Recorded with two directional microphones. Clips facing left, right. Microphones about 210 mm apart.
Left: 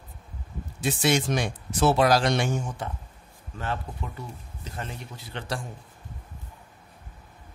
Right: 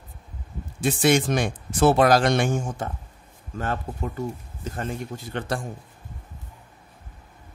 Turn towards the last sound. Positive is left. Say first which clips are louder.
# right 5 dB
turn(degrees=-50)  # may be behind; listen again after turning